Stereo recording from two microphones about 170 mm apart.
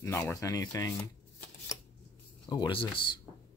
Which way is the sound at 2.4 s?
25° left (ahead or behind).